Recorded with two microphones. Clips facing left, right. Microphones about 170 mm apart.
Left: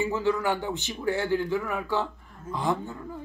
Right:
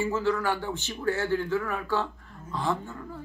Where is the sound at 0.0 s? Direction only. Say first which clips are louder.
Left 1 dB; 15° left (ahead or behind).